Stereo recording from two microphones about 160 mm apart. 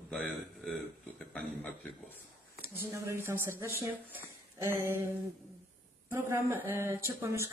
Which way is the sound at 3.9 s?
10° right (ahead or behind).